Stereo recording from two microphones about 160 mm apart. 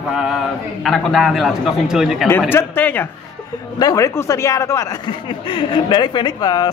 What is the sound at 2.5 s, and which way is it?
Speech, 10° left (ahead or behind).